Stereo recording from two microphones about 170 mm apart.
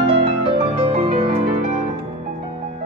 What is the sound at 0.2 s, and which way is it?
Music, 35° right (ahead or behind).